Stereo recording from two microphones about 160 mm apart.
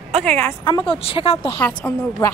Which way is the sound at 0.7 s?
30° left (ahead or behind).